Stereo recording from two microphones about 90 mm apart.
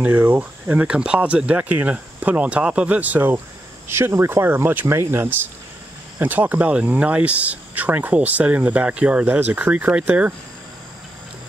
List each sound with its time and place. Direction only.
0.0 s speech: 20° right (ahead or behind)